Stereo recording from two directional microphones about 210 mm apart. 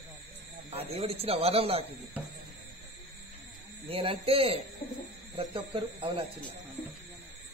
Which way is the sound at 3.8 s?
25° right (ahead or behind).